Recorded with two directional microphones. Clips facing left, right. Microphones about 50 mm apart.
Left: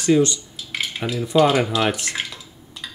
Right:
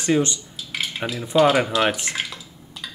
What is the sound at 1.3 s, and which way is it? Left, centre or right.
Speech, centre.